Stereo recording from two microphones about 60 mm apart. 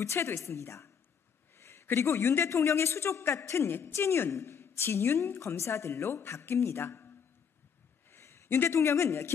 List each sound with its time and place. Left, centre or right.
0.0 s a man's voice: left
8.1 s a sound: left
8.7 s a man's voice: left